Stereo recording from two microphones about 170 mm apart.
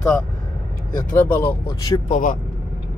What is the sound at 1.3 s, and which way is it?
Speech, 10° left (ahead or behind).